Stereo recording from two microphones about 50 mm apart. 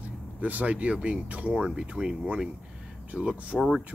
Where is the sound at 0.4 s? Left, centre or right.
Right.